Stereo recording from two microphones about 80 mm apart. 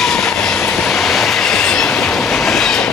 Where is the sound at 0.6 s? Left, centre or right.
Centre.